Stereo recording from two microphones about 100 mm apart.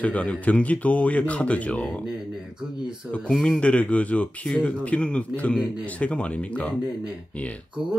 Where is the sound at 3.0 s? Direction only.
20° right (ahead or behind).